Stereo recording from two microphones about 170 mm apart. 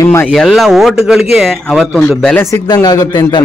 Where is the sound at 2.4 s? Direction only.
20° left (ahead or behind).